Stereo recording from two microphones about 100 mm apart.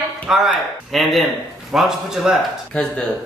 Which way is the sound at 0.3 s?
Centre (ahead or behind).